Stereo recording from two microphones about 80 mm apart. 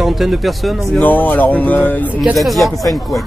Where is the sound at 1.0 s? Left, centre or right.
Left.